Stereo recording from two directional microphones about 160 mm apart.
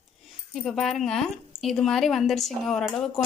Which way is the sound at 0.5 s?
Centre (ahead or behind).